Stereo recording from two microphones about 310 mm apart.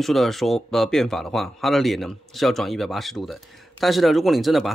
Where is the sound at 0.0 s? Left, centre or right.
Centre.